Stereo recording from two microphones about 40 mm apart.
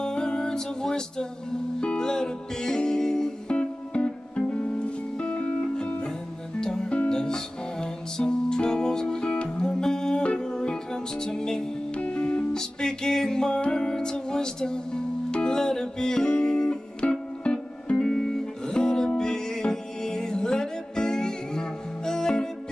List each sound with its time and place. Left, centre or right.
0.0 s music: centre
3.5 s music: left
11.9 s music: left
12.5 s music: centre
18.0 s music: centre